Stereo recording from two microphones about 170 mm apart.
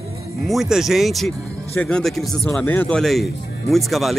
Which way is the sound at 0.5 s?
Centre (ahead or behind).